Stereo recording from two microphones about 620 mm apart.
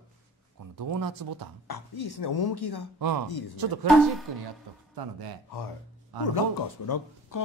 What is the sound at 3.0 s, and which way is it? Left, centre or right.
Speech, right.